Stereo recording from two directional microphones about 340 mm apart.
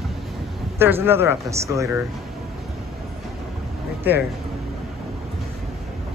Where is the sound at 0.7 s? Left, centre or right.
Centre.